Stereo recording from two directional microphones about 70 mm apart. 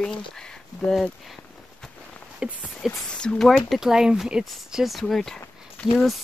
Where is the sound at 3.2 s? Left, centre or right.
Centre.